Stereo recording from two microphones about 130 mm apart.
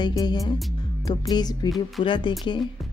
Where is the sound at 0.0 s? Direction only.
35° left (ahead or behind).